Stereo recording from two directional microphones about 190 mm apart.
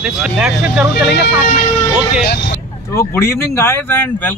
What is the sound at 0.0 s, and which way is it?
Speech, 5° right (ahead or behind).